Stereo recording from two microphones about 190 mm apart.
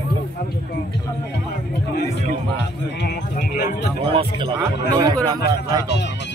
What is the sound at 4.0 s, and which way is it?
Speech, 30° right (ahead or behind).